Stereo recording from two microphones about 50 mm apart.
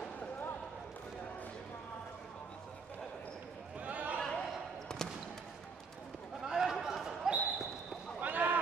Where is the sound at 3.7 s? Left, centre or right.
Right.